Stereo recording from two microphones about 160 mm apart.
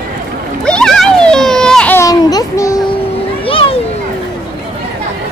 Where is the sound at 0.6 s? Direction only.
5° left (ahead or behind).